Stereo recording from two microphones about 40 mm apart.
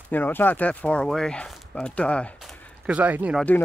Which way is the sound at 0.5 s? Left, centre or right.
Left.